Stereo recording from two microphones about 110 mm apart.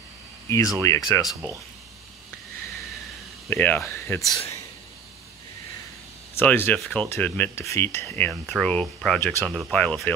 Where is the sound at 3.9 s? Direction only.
25° left (ahead or behind).